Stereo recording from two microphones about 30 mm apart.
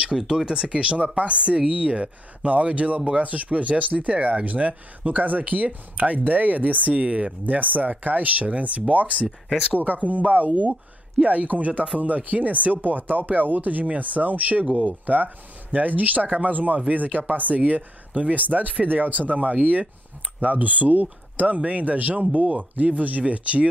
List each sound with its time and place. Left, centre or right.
0.1 s speech: centre
0.5 s speech: right
0.7 s speech: right
7.4 s speech: right
9.8 s speech: right
13.8 s speech: right
21.5 s speech: right